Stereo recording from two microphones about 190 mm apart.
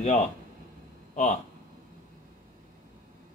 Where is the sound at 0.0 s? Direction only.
35° left (ahead or behind).